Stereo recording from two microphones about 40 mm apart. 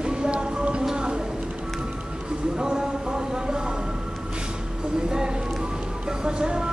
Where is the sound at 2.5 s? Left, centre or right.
Centre.